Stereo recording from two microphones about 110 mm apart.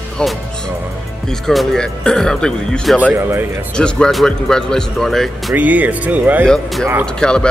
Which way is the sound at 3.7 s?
10° left (ahead or behind).